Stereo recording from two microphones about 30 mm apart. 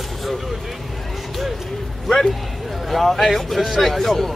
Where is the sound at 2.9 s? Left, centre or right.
Centre.